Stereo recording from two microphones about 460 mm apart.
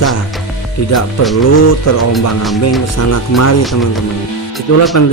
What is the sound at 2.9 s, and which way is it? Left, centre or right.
Speech, left.